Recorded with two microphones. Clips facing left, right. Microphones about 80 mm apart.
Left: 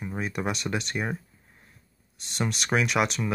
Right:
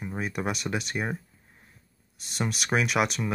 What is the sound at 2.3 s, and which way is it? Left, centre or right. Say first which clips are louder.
Speech: left 1 dB; centre.